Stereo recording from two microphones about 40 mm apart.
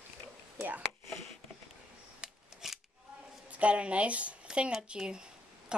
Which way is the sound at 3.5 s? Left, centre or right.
Right.